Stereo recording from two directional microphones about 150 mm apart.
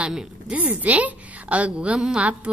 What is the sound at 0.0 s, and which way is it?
A woman's voice, 5° right (ahead or behind).